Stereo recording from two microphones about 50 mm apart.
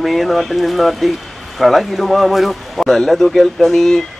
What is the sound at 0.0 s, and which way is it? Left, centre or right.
Speech, centre.